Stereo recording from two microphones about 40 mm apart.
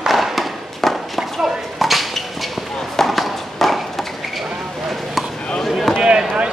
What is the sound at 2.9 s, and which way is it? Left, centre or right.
Clip-clop, centre.